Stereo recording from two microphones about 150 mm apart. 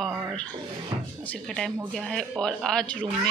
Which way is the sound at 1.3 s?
5° left (ahead or behind).